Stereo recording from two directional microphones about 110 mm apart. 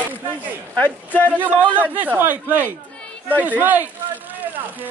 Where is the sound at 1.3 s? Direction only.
15° right (ahead or behind).